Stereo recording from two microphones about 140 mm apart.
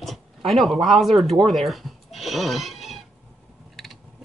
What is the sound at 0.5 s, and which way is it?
Speech, centre (ahead or behind).